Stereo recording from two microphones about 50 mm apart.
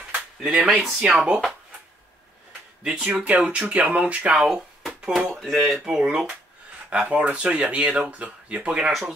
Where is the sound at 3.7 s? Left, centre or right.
Right.